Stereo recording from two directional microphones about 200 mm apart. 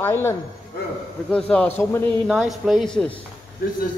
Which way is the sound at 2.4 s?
Centre (ahead or behind).